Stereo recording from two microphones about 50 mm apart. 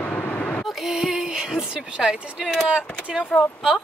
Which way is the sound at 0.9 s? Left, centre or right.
Centre.